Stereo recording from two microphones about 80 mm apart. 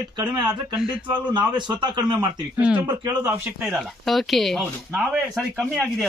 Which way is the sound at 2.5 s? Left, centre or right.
Centre.